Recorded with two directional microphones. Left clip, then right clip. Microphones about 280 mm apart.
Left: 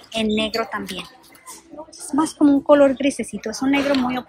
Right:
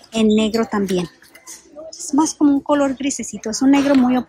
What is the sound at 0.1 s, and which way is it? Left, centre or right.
Speech, centre.